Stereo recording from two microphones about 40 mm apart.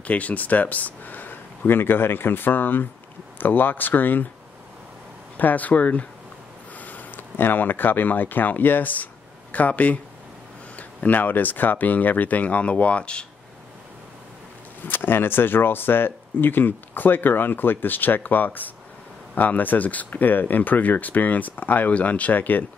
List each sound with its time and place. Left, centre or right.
0.0 s speech: left
5.4 s speech: left
14.9 s speech: left